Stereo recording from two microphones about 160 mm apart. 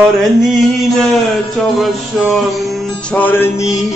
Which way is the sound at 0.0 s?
Centre (ahead or behind).